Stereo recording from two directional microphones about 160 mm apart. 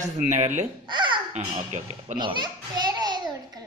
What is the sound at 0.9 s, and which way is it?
Babbling, 30° right (ahead or behind).